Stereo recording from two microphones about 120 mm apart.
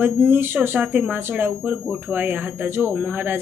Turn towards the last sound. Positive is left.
turn(degrees=-15)  # may be behind; listen again after turning